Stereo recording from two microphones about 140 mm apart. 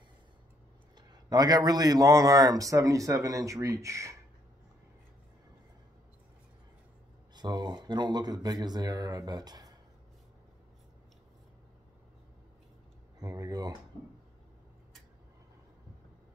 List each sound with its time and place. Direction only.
0.9 s a man's voice: 30° right (ahead or behind)
7.3 s a man's voice: 30° right (ahead or behind)
13.2 s a man's voice: 25° right (ahead or behind)